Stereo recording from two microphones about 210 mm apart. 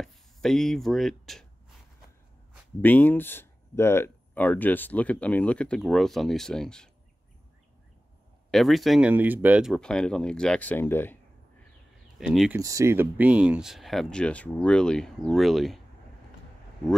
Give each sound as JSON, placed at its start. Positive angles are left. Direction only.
{"t": 0.0, "sound": "speech", "side_deg": 0}
{"t": 2.8, "sound": "speech", "side_deg": 10}
{"t": 8.5, "sound": "speech", "side_deg": 0}
{"t": 12.2, "sound": "speech", "side_deg": -5}
{"t": 12.5, "sound": "speech", "side_deg": -15}